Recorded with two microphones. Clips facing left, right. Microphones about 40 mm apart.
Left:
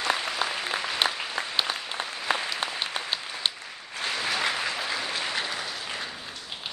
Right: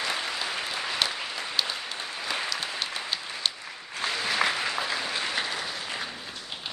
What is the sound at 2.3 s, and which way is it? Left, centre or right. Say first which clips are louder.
Applause: left 4 dB; left.